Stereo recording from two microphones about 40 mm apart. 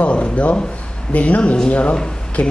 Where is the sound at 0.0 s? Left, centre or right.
Left.